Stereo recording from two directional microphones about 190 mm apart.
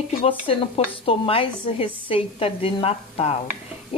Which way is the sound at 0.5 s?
30° left (ahead or behind).